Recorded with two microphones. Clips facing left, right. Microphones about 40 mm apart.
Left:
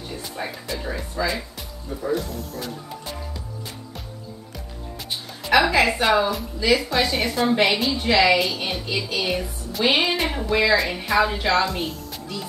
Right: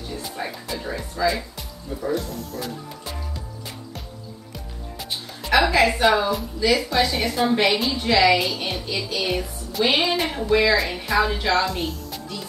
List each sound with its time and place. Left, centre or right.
0.2 s a woman's voice: centre
5.4 s a woman's voice: centre